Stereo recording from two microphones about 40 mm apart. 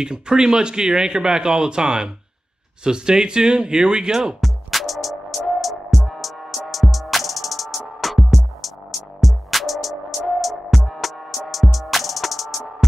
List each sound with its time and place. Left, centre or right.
0.0 s speech: right
4.4 s music: centre